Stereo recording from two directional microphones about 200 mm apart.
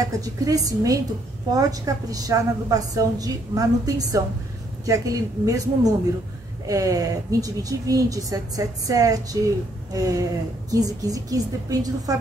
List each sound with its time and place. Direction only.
0.2 s a woman's voice: 20° right (ahead or behind)